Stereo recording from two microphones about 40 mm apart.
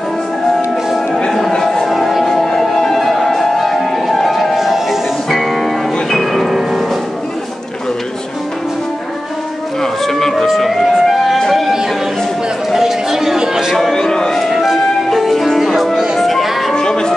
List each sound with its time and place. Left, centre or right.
1.6 s music: centre
10.0 s music: centre
12.7 s a sound: centre
13.9 s a sound: centre
14.5 s music: centre
14.8 s music: centre
16.7 s music: centre